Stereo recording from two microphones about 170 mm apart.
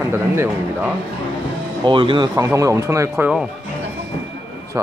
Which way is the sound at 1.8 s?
30° right (ahead or behind).